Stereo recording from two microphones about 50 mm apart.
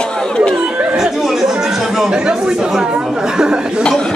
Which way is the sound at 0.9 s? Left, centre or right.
Centre.